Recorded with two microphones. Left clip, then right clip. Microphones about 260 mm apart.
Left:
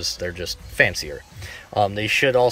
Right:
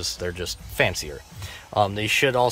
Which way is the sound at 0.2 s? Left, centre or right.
Centre.